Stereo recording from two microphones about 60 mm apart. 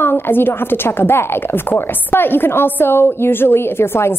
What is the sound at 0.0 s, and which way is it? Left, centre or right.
A woman's voice, left.